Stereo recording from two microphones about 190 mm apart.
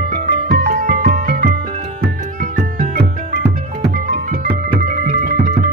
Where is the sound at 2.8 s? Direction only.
45° right (ahead or behind).